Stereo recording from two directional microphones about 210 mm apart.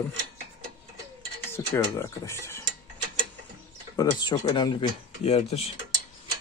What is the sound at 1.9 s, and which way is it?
Speech, 15° left (ahead or behind).